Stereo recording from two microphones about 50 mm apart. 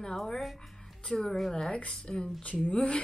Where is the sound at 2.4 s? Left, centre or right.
Left.